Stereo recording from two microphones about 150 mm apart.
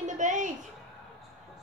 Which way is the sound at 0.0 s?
55° right (ahead or behind).